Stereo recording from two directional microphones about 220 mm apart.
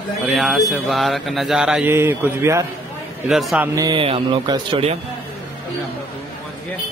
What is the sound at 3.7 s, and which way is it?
Speech, 20° right (ahead or behind).